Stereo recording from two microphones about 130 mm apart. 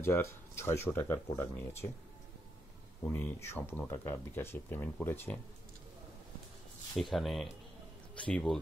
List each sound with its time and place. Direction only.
0.0 s speech: 20° left (ahead or behind)
3.0 s speech: 15° left (ahead or behind)
7.0 s speech: centre (ahead or behind)